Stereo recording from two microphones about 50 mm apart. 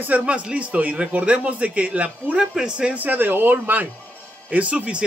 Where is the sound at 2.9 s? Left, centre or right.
Right.